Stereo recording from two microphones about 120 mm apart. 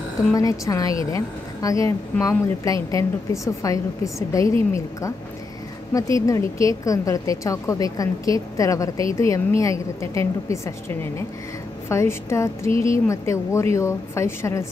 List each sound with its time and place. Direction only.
0.3 s a woman's voice: 30° left (ahead or behind)
5.9 s a woman's voice: 25° left (ahead or behind)